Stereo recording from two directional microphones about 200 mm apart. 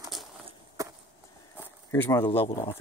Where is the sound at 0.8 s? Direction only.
15° right (ahead or behind).